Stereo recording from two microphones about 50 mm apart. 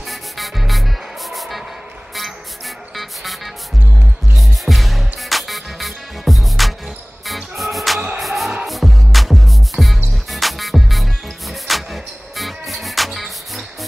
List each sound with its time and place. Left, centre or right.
0.0 s music: centre